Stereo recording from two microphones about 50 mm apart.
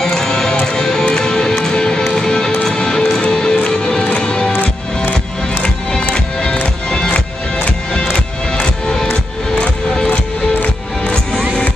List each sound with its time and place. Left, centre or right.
0.0 s music: centre
4.6 s music: left
5.9 s music: centre
9.6 s music: centre